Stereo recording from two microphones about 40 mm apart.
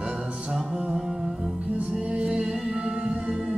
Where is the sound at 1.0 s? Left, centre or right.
Centre.